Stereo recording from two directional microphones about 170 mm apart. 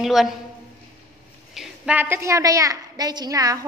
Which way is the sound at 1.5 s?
5° right (ahead or behind).